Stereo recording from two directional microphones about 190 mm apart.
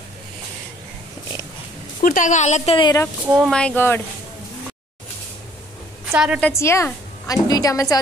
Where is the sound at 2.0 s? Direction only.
45° left (ahead or behind).